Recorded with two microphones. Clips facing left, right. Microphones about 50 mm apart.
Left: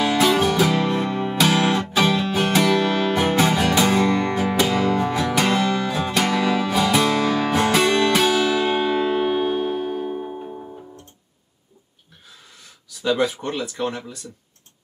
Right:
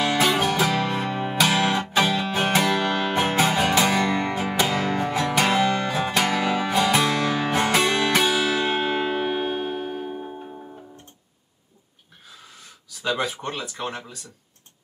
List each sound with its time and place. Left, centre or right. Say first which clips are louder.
0.0 s music: left 3 dB; centre
10.5 s music: left 4 dB; centre
13.3 s speech: left 4 dB; centre